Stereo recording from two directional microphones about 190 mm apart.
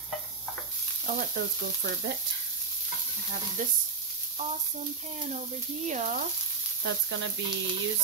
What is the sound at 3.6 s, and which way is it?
Speech, 45° right (ahead or behind).